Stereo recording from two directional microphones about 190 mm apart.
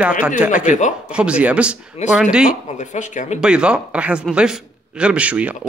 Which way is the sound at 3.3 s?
5° right (ahead or behind).